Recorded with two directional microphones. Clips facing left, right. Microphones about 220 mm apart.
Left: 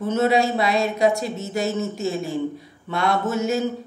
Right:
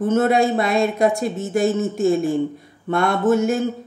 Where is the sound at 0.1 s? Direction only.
50° right (ahead or behind).